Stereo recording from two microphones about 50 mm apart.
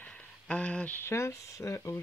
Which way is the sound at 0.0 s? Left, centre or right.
Left.